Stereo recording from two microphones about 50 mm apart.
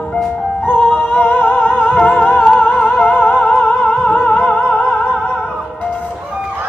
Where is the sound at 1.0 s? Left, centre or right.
Left.